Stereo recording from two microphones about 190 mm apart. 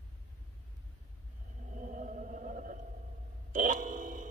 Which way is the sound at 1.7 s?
40° right (ahead or behind).